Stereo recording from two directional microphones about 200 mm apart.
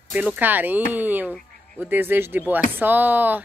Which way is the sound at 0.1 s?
10° right (ahead or behind).